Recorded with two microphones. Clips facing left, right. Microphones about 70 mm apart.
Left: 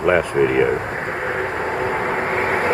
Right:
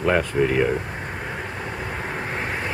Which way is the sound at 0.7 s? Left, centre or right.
Left.